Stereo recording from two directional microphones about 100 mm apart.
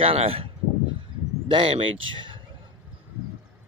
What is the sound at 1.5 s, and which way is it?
Speech, 65° right (ahead or behind).